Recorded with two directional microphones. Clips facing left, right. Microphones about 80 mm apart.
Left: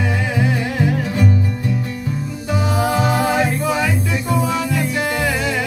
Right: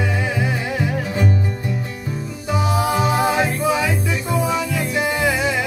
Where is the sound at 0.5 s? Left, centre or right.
Centre.